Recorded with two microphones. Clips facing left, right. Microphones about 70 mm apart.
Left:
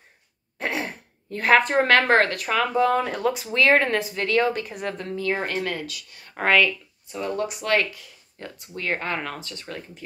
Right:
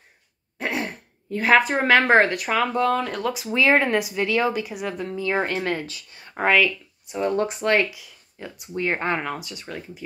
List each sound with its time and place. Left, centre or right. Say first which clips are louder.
0.6 s speech: right 1 dB; centre
2.7 s speech: left 1 dB; centre
3.5 s speech: right 1 dB; centre
5.4 s speech: right 2 dB; right
6.3 s speech: right 1 dB; centre
7.1 s speech: right 4 dB; right
7.8 s speech: right 3 dB; centre
8.7 s speech: right 3 dB; right